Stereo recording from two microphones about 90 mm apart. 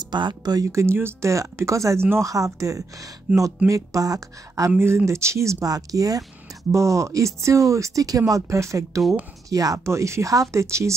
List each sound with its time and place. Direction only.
0.0 s speech: 55° right (ahead or behind)
0.6 s speech: 35° right (ahead or behind)
3.3 s speech: 15° right (ahead or behind)
3.6 s speech: 40° right (ahead or behind)
4.7 s speech: 30° right (ahead or behind)